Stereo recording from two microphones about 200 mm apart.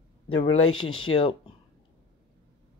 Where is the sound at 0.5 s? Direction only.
90° left.